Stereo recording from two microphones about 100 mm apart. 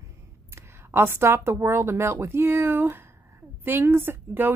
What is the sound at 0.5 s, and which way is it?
A woman's voice, 25° right (ahead or behind).